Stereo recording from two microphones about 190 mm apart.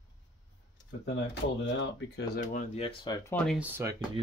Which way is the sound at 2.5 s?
30° left (ahead or behind).